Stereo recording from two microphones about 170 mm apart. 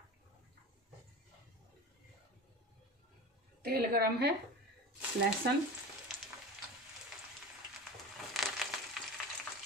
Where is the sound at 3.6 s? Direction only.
65° right (ahead or behind).